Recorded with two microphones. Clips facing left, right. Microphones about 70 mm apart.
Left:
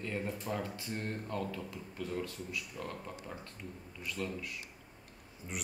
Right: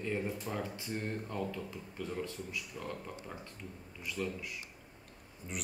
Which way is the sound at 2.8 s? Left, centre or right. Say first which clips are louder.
Right 1 dB; centre.